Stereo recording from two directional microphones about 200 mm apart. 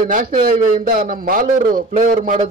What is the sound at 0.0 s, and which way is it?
A man's voice, 45° right (ahead or behind).